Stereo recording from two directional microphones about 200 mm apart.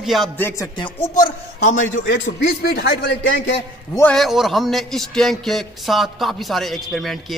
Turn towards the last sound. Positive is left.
turn(degrees=0)  # may be behind; listen again after turning